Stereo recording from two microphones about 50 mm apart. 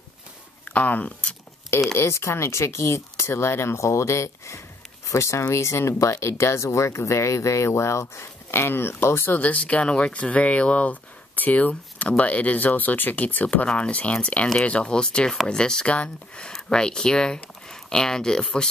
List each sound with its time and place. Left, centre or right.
0.7 s speech: left
2.0 s speech: left
9.4 s speech: left